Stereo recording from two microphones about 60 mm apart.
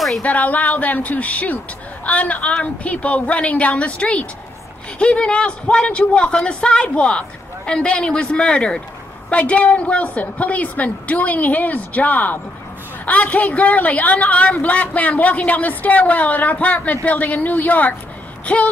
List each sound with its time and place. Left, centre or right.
0.2 s a woman's voice: left